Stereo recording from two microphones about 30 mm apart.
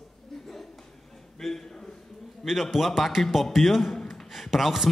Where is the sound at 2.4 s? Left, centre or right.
Centre.